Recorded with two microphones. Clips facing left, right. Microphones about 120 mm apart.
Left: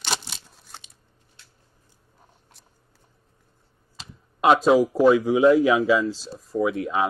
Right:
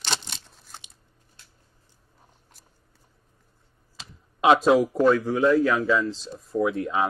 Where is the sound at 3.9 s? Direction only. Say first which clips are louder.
Left 1 dB; centre (ahead or behind).